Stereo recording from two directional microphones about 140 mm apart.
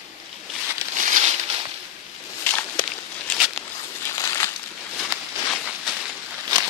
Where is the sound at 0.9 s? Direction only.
65° right (ahead or behind).